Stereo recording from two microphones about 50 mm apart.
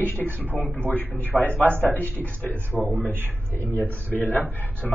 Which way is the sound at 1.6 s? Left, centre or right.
Right.